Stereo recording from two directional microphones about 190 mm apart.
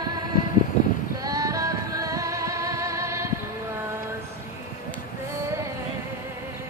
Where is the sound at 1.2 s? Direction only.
20° right (ahead or behind).